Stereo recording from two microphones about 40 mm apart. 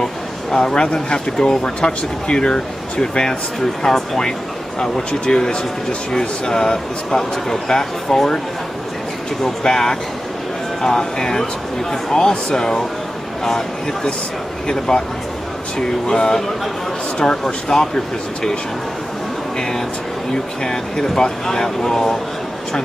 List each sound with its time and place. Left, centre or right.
0.0 s a sound: centre
0.9 s speech: centre
9.6 s speech: centre
14.7 s speech: centre
16.1 s speech: centre
20.6 s speech: centre